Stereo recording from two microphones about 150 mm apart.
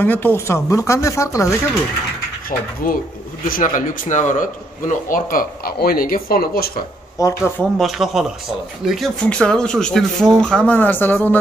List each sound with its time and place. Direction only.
0.0 s speech: 15° left (ahead or behind)
2.8 s a man's voice: 65° left (ahead or behind)
5.1 s speech: 70° left (ahead or behind)
7.2 s speech: 20° left (ahead or behind)
7.7 s speech: centre (ahead or behind)